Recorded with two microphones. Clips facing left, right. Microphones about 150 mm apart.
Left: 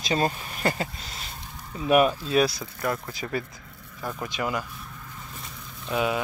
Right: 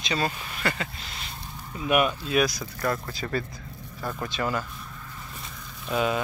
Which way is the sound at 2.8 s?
20° left (ahead or behind).